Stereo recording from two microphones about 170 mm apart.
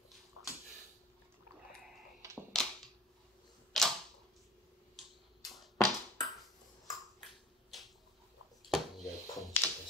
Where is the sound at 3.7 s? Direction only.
Centre (ahead or behind).